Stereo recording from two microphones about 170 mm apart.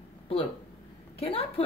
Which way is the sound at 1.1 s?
35° left (ahead or behind).